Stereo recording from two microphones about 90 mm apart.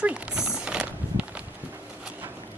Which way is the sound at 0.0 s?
10° right (ahead or behind).